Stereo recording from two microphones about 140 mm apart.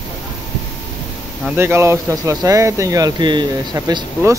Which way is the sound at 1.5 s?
15° right (ahead or behind).